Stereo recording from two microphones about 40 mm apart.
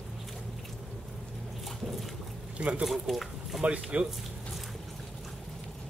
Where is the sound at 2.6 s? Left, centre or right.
Right.